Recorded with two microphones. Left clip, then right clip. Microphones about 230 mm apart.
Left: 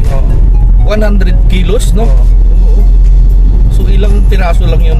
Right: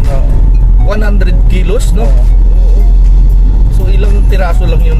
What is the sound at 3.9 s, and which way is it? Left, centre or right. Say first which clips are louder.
Speech: left 2 dB; centre.